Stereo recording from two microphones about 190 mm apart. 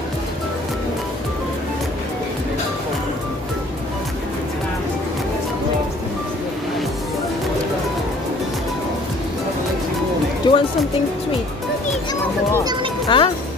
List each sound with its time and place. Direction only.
10.4 s music: 25° left (ahead or behind)
13.1 s speech: 25° left (ahead or behind)